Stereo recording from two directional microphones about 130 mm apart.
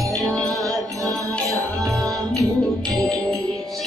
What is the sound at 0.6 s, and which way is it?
Music, 25° right (ahead or behind).